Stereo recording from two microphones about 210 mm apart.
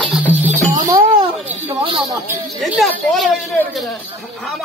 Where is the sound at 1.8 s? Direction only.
20° right (ahead or behind).